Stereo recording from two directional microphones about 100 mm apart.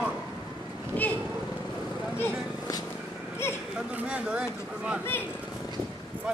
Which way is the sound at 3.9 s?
10° right (ahead or behind).